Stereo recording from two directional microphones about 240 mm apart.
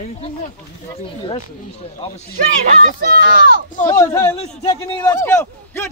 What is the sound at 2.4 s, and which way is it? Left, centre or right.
Speech, right.